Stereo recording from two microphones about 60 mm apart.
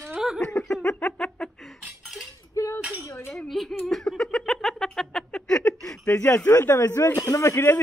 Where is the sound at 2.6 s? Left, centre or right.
Left.